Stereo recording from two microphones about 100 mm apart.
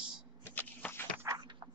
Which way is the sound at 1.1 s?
30° right (ahead or behind).